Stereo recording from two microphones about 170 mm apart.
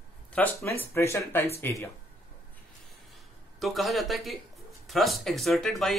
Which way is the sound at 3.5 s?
Centre (ahead or behind).